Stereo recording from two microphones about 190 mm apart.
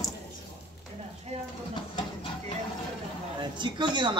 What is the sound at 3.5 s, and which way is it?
Speech, 25° right (ahead or behind).